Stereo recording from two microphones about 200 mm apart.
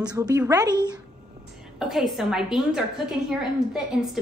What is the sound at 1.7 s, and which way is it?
A woman's voice, centre (ahead or behind).